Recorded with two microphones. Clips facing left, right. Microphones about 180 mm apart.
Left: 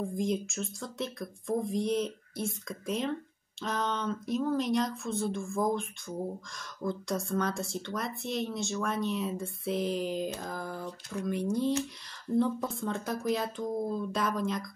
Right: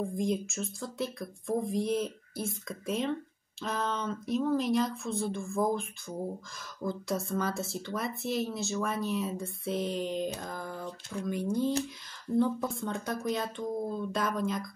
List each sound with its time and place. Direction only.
0.0 s speech: centre (ahead or behind)